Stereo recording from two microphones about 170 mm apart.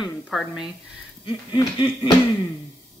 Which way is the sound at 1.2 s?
30° left (ahead or behind).